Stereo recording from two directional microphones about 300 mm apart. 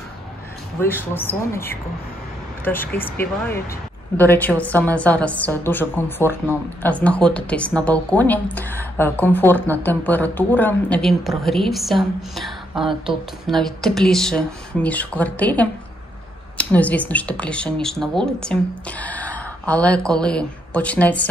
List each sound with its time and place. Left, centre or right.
0.7 s speech: centre
4.2 s a woman's voice: centre